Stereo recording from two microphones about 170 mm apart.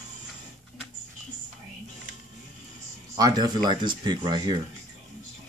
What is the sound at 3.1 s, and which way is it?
Speech, 25° right (ahead or behind).